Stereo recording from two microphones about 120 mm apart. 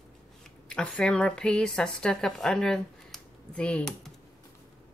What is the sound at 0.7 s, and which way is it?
Speech, 5° left (ahead or behind).